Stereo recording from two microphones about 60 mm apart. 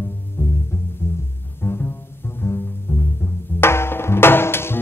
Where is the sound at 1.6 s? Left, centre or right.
Left.